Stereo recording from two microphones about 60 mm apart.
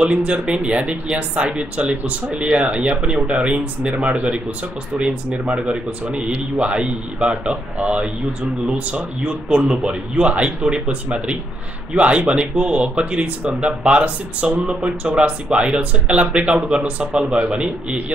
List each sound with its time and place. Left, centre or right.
0.0 s speech: centre